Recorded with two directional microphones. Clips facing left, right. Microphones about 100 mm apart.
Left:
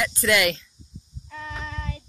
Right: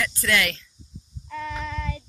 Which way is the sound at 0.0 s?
20° left (ahead or behind).